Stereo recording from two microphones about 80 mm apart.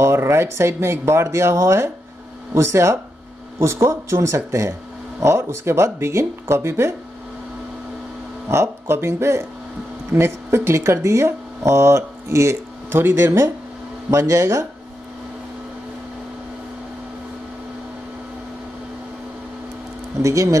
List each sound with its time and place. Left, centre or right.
0.0 s speech: right
8.5 s speech: right
20.2 s speech: right